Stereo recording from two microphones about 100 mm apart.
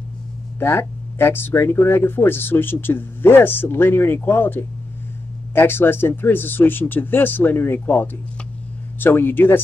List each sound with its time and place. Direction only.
0.6 s speech: 25° left (ahead or behind)